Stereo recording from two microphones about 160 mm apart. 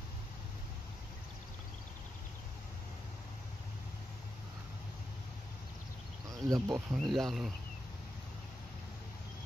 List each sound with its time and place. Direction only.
6.4 s speech: 25° right (ahead or behind)
7.0 s speech: centre (ahead or behind)